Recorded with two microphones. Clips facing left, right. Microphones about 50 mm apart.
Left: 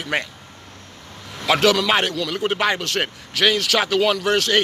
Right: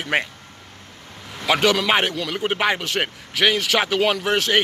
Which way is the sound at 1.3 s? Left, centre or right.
Centre.